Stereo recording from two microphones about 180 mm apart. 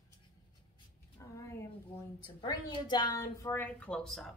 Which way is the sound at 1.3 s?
15° left (ahead or behind).